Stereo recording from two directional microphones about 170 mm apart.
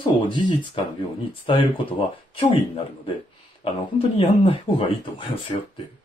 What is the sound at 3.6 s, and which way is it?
Speech, 30° left (ahead or behind).